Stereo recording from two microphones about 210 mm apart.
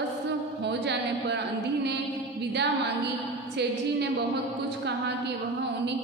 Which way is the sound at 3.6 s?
55° right (ahead or behind).